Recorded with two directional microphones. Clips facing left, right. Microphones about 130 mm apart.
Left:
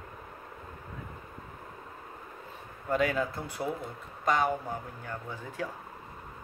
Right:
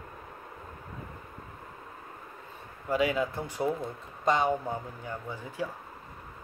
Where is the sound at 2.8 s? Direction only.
10° right (ahead or behind).